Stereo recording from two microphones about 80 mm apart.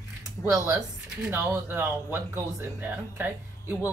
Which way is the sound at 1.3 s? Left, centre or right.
Right.